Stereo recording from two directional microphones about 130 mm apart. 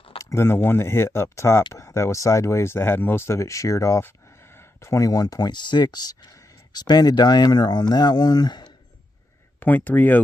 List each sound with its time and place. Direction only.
0.2 s speech: 20° left (ahead or behind)
9.6 s speech: 15° left (ahead or behind)